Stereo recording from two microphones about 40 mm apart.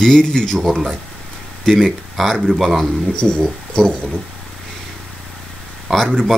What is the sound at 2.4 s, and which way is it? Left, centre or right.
Speech, centre.